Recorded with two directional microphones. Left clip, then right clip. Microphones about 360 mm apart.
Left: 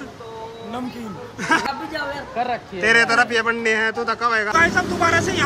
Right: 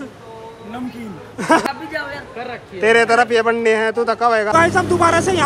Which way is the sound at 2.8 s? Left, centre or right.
Centre.